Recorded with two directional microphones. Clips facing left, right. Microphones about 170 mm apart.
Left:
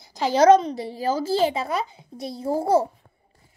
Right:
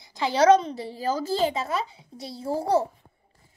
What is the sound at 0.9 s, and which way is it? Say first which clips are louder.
A woman's voice: left 3 dB; 10° left (ahead or behind).